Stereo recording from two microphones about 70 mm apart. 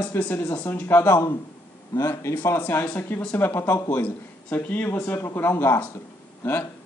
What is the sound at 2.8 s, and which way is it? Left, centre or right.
Speech, left.